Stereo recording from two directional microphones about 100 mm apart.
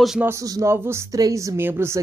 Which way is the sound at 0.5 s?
30° right (ahead or behind).